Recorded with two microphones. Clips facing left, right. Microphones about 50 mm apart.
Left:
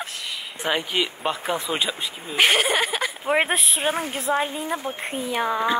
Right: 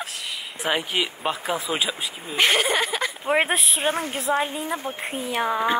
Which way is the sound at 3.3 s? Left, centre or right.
Centre.